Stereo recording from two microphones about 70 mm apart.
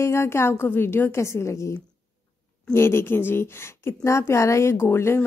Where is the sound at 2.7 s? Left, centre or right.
Left.